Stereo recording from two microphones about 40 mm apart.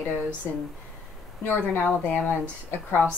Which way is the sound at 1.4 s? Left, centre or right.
Left.